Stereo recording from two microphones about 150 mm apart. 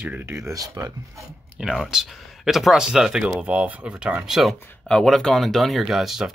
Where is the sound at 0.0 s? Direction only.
10° right (ahead or behind).